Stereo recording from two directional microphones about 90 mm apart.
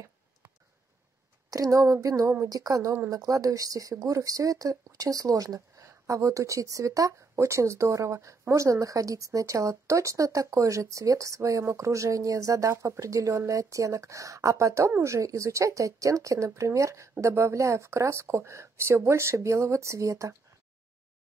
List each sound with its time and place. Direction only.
1.5 s speech: 40° right (ahead or behind)